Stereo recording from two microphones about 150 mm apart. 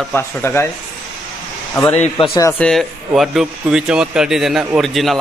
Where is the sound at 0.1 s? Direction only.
15° left (ahead or behind).